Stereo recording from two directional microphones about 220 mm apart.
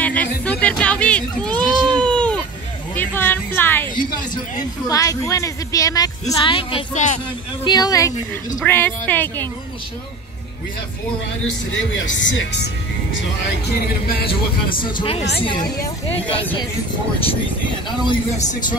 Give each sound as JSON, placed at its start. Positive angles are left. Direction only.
{"t": 0.0, "sound": "a sound", "side_deg": 5}
{"t": 4.8, "sound": "speech", "side_deg": 15}
{"t": 7.6, "sound": "speech", "side_deg": 20}
{"t": 11.7, "sound": "speech", "side_deg": 55}
{"t": 13.7, "sound": "speech", "side_deg": 45}
{"t": 14.8, "sound": "speech", "side_deg": 25}
{"t": 18.0, "sound": "speech", "side_deg": 20}